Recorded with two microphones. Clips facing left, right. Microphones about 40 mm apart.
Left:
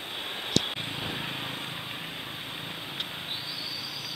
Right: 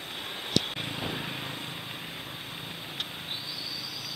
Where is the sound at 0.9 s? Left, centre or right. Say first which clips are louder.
Even; centre.